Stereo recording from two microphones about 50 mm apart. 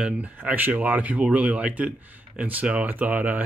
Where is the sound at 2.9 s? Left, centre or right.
Right.